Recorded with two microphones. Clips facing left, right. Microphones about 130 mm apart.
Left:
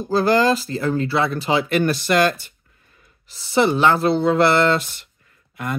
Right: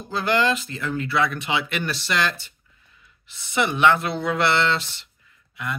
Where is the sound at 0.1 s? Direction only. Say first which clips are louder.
Left 5 dB; 40° left (ahead or behind).